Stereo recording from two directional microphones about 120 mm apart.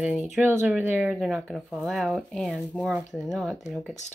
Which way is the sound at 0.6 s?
10° right (ahead or behind).